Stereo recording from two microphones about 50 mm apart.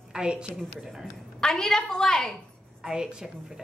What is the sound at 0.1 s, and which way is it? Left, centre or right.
Speech, centre.